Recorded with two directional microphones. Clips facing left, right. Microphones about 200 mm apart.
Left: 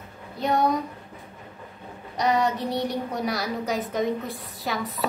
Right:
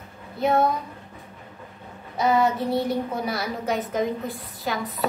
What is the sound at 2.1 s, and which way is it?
A woman's voice, centre (ahead or behind).